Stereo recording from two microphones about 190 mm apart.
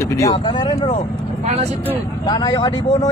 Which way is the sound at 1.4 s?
35° right (ahead or behind).